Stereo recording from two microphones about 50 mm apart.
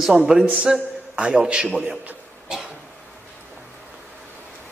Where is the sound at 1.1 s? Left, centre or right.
Right.